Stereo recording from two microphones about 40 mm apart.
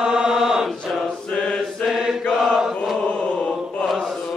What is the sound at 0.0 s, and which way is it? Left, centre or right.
Mantra, centre.